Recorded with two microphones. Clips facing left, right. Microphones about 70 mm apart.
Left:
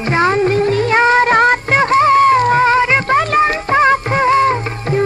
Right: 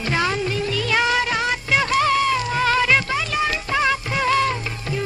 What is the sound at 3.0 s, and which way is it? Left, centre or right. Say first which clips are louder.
Music: left 10 dB; left.